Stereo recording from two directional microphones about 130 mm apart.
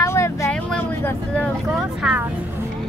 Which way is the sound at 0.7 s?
15° left (ahead or behind).